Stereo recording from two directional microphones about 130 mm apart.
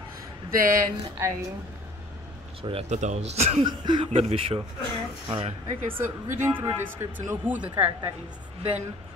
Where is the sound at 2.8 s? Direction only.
65° right (ahead or behind).